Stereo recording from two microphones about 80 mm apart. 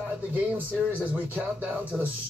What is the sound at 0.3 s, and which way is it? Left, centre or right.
Speech, right.